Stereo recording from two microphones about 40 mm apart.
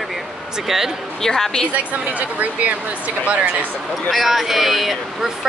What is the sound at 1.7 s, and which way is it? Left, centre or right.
A woman's voice, right.